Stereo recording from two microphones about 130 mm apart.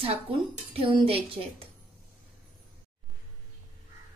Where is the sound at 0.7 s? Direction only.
45° right (ahead or behind).